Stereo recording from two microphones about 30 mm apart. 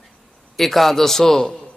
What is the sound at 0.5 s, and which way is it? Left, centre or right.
A man's voice, centre.